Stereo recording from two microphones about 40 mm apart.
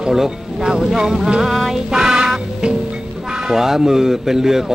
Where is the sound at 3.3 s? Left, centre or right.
Centre.